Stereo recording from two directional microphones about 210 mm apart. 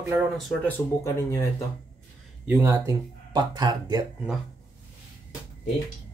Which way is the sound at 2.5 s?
10° right (ahead or behind).